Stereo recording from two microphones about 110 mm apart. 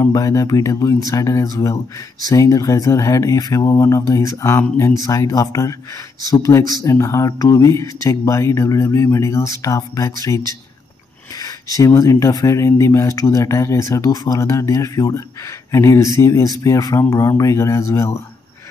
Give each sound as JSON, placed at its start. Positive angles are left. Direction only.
{"t": 0.0, "sound": "speech", "side_deg": 35}